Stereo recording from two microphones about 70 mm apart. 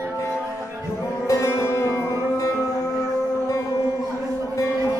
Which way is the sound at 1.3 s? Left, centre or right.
Left.